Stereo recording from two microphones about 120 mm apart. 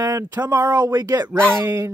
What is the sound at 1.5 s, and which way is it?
Speech, 15° right (ahead or behind).